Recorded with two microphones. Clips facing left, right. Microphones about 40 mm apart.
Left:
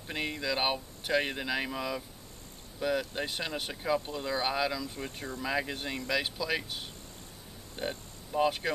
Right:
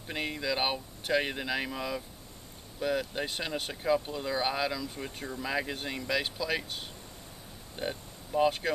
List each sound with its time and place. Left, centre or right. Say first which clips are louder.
0.0 s speech: even; centre